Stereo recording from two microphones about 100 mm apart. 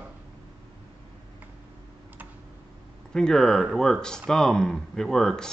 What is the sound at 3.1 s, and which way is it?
Speech, 5° left (ahead or behind).